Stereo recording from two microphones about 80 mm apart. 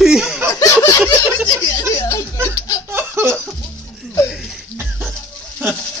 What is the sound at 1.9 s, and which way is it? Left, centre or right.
Chuckle, left.